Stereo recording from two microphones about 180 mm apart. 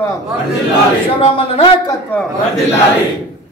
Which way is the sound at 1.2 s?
30° left (ahead or behind).